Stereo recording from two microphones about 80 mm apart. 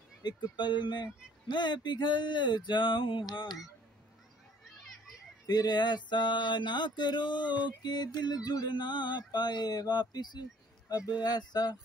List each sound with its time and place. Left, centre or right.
0.2 s mantra: left
4.7 s children playing: centre
5.5 s mantra: left
7.6 s speech: left